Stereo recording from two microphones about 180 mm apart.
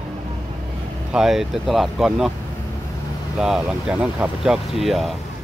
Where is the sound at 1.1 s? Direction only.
5° right (ahead or behind).